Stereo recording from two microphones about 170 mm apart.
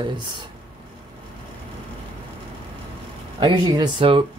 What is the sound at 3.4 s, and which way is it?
Speech, 25° right (ahead or behind).